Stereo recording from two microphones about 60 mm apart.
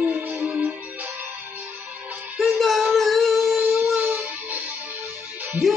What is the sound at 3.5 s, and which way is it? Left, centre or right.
Music, right.